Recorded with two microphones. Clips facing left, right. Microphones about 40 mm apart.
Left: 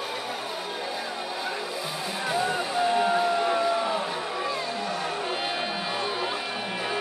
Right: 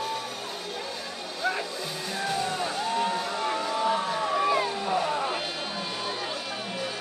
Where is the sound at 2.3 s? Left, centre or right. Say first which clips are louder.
Left 3 dB; centre.